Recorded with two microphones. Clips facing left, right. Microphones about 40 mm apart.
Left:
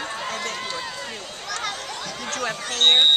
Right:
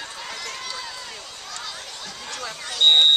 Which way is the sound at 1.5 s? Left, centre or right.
Left.